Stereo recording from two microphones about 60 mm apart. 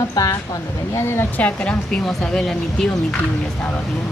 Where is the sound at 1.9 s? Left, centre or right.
Centre.